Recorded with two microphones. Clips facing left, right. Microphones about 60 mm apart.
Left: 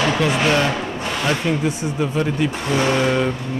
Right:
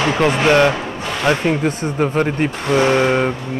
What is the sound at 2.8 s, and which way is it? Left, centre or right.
Speech, right.